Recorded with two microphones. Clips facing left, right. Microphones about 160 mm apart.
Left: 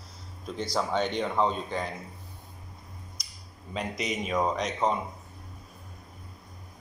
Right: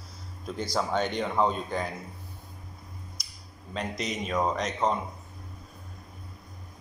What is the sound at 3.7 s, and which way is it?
Speech, 5° left (ahead or behind).